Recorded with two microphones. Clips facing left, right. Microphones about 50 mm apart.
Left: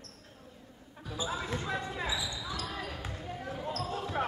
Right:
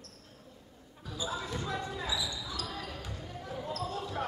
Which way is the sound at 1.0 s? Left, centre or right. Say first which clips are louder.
Left 1 dB; left.